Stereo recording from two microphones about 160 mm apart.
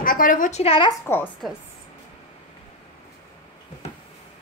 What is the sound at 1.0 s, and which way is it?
Speech, 15° left (ahead or behind).